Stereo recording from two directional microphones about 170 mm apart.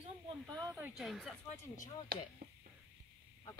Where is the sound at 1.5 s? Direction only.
50° left (ahead or behind).